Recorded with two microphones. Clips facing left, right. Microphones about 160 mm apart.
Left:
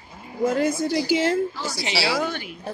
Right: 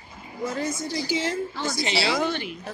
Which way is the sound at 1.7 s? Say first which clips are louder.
Right 1 dB; 70° left (ahead or behind).